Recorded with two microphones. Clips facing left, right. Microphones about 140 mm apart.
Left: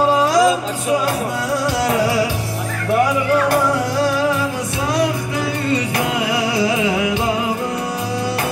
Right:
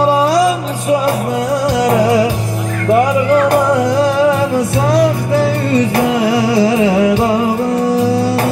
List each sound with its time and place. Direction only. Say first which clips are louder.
6.5 s music: right 6 dB; 40° right (ahead or behind)